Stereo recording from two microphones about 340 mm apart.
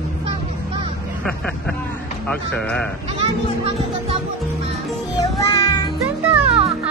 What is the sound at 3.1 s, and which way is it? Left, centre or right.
Music, centre.